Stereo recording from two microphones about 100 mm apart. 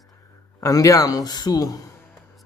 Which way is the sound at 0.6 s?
35° left (ahead or behind).